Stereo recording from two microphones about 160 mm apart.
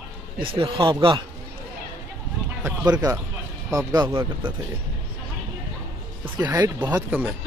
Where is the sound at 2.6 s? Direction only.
20° right (ahead or behind).